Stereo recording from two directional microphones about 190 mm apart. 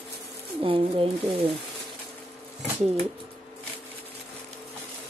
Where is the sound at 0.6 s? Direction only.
30° right (ahead or behind).